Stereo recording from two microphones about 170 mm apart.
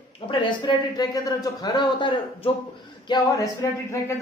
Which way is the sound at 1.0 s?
20° left (ahead or behind).